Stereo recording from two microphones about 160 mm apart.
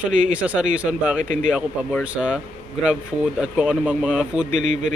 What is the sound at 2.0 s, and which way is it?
Speech, 5° right (ahead or behind).